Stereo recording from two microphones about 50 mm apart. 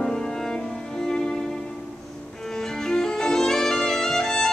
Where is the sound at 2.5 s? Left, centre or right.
Centre.